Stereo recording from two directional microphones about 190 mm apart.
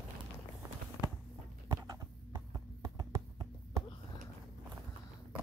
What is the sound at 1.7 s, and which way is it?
Clip-clop, 15° right (ahead or behind).